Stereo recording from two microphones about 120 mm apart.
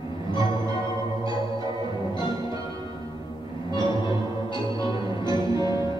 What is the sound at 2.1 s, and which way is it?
Music, 40° left (ahead or behind).